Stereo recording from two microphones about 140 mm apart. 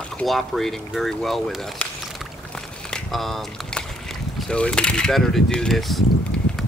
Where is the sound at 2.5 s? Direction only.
Centre (ahead or behind).